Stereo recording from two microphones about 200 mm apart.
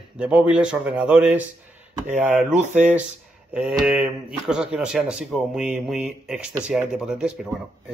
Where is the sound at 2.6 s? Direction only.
35° right (ahead or behind).